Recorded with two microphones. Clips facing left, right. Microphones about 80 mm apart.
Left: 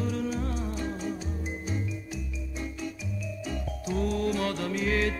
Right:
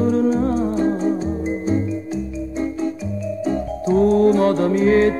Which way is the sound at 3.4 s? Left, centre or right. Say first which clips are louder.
Right 14 dB; right.